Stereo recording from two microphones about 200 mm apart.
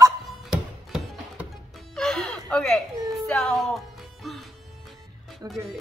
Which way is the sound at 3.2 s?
5° left (ahead or behind).